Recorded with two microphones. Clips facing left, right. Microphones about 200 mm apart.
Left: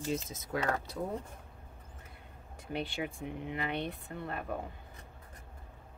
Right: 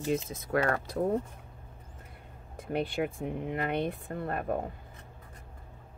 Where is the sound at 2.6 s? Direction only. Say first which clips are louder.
Right 6 dB; 50° right (ahead or behind).